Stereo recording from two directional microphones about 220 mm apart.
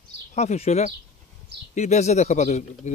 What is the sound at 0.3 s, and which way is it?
A man's voice, 30° left (ahead or behind).